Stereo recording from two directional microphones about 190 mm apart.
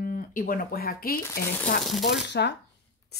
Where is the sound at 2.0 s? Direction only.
65° left (ahead or behind).